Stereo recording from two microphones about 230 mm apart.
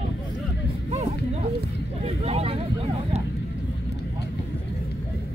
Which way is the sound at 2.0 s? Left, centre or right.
Right.